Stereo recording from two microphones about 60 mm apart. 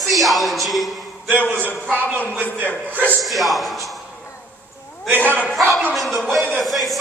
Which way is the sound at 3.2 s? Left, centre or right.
Centre.